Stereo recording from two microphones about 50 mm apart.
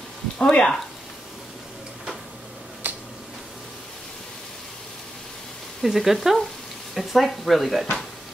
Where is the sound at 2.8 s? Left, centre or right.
Right.